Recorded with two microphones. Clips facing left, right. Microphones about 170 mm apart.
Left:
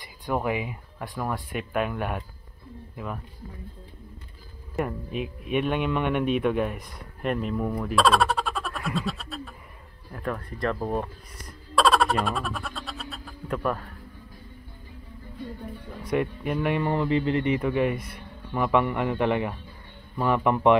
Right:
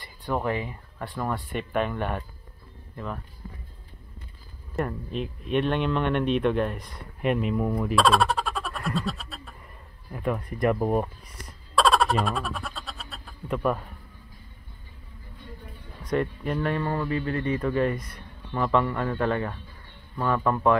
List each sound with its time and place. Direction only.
0.0 s speech: 10° left (ahead or behind)
4.7 s speech: 5° left (ahead or behind); by 11.5 s 10° right (ahead or behind)
11.7 s a sound: centre (ahead or behind)
16.0 s speech: 10° left (ahead or behind)